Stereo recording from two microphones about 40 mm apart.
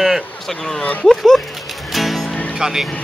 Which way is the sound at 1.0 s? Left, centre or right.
Centre.